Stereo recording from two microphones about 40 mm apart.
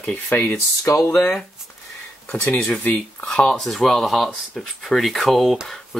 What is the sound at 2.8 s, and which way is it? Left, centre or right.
Speech, left.